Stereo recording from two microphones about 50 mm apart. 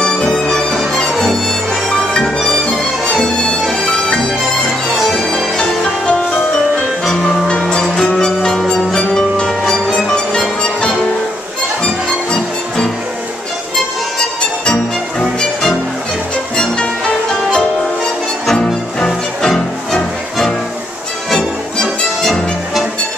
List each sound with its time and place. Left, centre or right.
0.0 s music: centre
1.9 s music: centre
3.7 s bagpipes: centre
4.9 s bagpipes: centre
7.8 s music: centre
11.8 s music: centre
14.7 s music: centre
18.5 s music: centre
22.2 s music: centre